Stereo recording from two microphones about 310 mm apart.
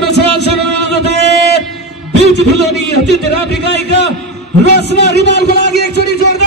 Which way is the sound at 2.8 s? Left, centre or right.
Left.